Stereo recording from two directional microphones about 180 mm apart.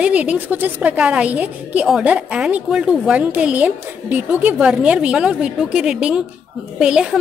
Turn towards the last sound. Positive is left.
turn(degrees=-5)  # may be behind; listen again after turning